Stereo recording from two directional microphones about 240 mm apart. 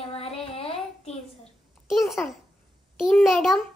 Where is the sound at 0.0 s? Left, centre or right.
Left.